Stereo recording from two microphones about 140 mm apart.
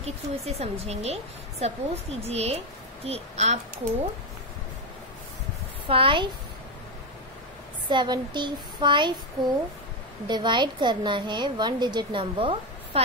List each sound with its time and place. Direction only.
0.0 s speech: 50° right (ahead or behind)
5.9 s a woman's voice: 40° right (ahead or behind)
7.9 s a woman's voice: 35° right (ahead or behind)
10.2 s a woman's voice: 35° right (ahead or behind)